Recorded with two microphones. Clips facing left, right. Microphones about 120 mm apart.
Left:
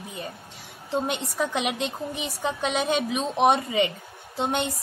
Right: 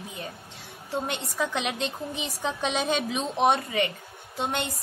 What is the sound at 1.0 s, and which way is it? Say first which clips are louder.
A woman's voice: left 2 dB; 15° left (ahead or behind).